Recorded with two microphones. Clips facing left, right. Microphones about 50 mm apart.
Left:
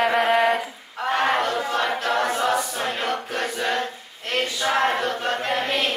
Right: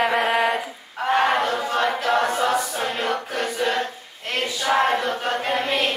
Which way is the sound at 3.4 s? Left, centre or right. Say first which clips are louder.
Right 2 dB; centre.